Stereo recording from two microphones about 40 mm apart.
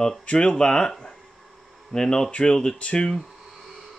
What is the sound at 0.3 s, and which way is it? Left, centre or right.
Speech, centre.